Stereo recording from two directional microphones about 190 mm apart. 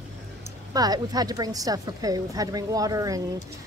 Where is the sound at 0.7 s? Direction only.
20° right (ahead or behind).